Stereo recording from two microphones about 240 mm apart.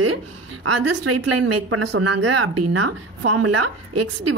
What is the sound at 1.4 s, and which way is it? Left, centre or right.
A woman's voice, right.